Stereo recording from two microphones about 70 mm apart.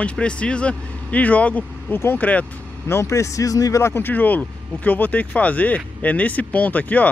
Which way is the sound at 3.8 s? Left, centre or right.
Left.